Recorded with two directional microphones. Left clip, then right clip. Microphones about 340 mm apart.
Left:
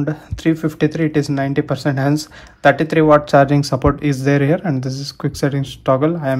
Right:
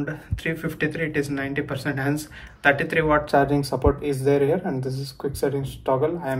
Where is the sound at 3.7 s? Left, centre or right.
Right.